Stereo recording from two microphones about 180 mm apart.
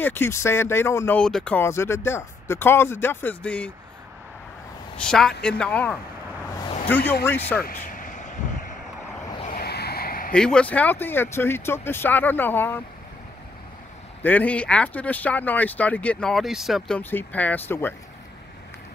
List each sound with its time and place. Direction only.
0.0 s speech: 10° left (ahead or behind)
4.9 s speech: 5° left (ahead or behind)
7.6 s vehicle: 50° left (ahead or behind)
9.4 s a sound: 55° left (ahead or behind)
10.3 s speech: 5° left (ahead or behind)
14.2 s speech: 10° left (ahead or behind)